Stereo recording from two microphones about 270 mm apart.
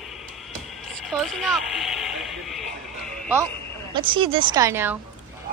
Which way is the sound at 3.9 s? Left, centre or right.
Centre.